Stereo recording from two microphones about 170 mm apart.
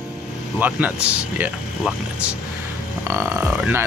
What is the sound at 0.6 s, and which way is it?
Speech, 10° right (ahead or behind).